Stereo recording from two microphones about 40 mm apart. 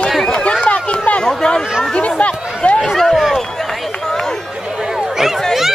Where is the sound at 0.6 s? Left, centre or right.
Left.